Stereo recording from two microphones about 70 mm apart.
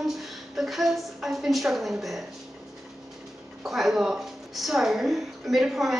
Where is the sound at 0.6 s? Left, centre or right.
Centre.